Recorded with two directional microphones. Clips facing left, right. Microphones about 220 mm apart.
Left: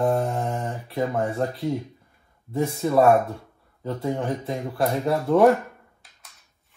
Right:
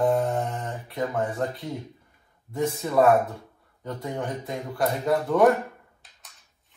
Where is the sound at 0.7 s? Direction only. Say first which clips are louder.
Left 3 dB; 30° left (ahead or behind).